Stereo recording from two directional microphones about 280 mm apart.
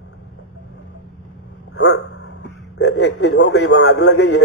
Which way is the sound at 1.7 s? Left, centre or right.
Left.